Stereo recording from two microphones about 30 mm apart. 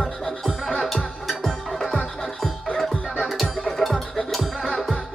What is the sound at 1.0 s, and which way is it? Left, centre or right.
Music, centre.